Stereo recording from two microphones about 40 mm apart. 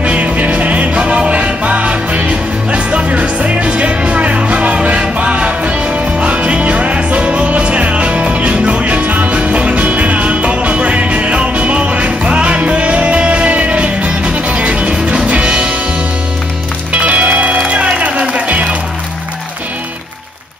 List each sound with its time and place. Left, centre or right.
0.0 s music: right
16.9 s music: right